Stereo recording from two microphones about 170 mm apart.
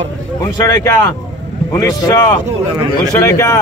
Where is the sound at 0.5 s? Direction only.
20° left (ahead or behind).